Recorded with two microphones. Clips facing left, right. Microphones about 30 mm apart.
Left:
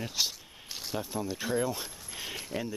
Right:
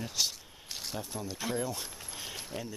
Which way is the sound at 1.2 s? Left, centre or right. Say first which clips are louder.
Left 2 dB; centre.